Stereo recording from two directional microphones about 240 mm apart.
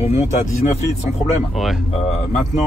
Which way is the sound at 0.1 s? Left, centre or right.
Left.